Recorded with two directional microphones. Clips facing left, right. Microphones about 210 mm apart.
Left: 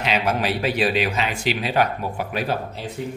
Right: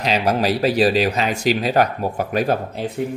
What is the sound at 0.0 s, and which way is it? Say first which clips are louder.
Speech: right 3 dB; 40° right (ahead or behind).